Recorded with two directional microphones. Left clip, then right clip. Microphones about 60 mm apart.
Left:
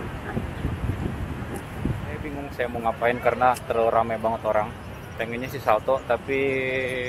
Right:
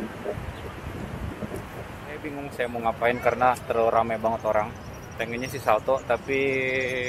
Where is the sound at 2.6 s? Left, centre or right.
Right.